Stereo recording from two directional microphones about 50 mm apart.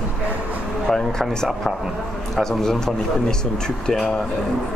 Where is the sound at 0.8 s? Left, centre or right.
Centre.